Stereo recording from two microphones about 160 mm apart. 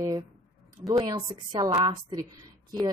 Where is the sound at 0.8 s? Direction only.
25° right (ahead or behind).